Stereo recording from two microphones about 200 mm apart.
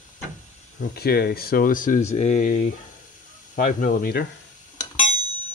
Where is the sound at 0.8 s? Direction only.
50° left (ahead or behind).